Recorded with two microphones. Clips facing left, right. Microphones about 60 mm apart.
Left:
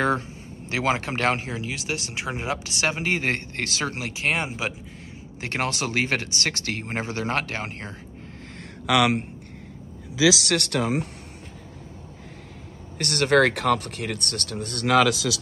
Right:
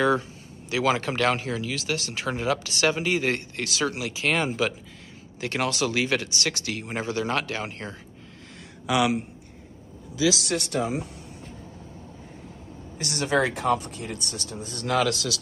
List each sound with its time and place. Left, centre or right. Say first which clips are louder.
0.7 s speech: right 1 dB; left
5.4 s speech: right 1 dB; left
8.8 s speech: left 3 dB; left
10.4 s speech: left 2 dB; left
12.9 s speech: left 5 dB; left